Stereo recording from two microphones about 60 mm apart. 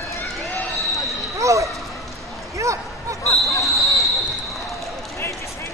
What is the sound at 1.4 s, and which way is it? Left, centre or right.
Basketball bounce, right.